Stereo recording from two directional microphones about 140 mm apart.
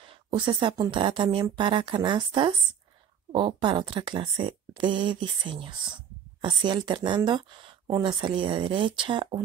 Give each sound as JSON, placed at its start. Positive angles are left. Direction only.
{"t": 0.3, "sound": "speech", "side_deg": -35}